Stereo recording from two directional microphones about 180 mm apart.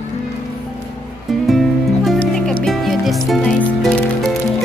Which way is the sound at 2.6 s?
Centre (ahead or behind).